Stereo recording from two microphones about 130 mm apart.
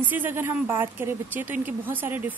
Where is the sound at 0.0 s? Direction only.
15° right (ahead or behind).